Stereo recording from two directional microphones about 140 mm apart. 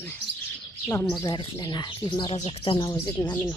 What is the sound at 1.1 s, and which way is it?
Speech, 30° left (ahead or behind).